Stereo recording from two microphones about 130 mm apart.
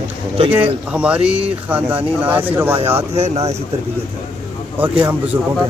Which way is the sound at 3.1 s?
55° right (ahead or behind).